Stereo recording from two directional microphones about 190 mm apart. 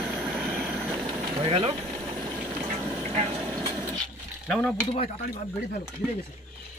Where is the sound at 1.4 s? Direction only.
30° right (ahead or behind).